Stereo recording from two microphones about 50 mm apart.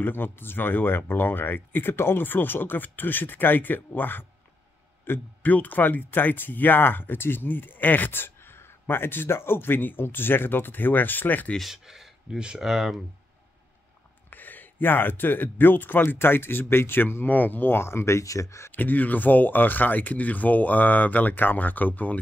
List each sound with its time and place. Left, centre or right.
0.0 s speech: left
5.1 s speech: left
5.4 s speech: left
11.6 s speech: centre
14.3 s speech: left
18.7 s speech: left